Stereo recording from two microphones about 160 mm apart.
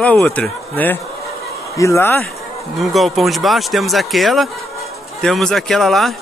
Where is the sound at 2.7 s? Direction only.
Centre (ahead or behind).